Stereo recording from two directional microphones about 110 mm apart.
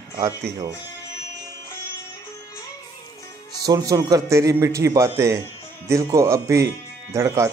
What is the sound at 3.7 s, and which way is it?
Speech, 35° right (ahead or behind).